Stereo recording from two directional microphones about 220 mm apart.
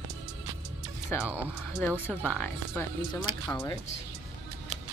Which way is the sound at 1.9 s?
5° right (ahead or behind).